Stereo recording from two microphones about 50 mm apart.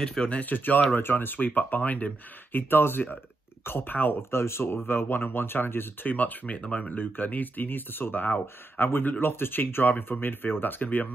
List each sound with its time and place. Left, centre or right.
0.4 s speech: left
2.7 s speech: left
4.2 s speech: left